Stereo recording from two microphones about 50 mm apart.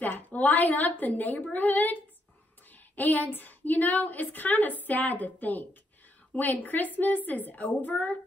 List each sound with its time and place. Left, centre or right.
0.0 s a woman's voice: left
2.7 s a sound: left
3.3 s a woman's voice: left